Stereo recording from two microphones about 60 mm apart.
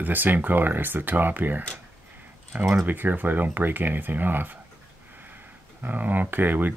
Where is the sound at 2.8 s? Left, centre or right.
Right.